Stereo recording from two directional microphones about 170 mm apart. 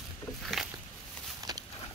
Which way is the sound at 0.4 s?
Centre (ahead or behind).